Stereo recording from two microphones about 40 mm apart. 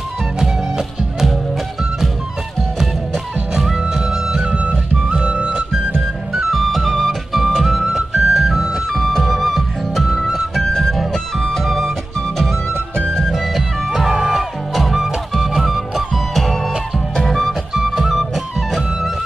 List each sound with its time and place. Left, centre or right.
3.5 s music: centre
5.2 s music: right
6.3 s music: centre
8.9 s music: centre
10.1 s music: centre
10.6 s music: centre
11.6 s music: centre
13.3 s music: centre
16.3 s music: centre
17.7 s music: centre